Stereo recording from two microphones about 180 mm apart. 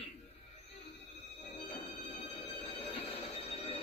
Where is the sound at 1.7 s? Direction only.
35° left (ahead or behind).